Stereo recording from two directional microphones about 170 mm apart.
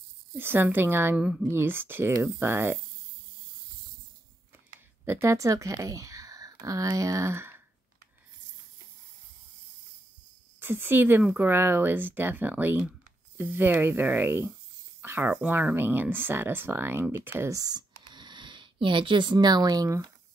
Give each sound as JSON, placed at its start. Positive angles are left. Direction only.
{"t": 0.3, "sound": "speech", "side_deg": -10}
{"t": 5.0, "sound": "speech", "side_deg": -15}
{"t": 10.6, "sound": "speech", "side_deg": -10}